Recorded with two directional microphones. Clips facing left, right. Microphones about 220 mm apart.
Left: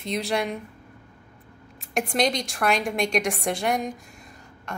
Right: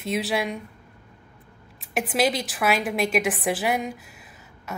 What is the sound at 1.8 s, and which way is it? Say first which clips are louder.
A woman's voice: right 1 dB; 5° right (ahead or behind).